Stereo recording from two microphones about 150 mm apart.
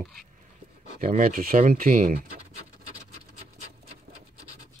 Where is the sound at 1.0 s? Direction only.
65° right (ahead or behind).